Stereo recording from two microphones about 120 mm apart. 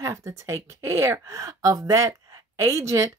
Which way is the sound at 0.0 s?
25° right (ahead or behind).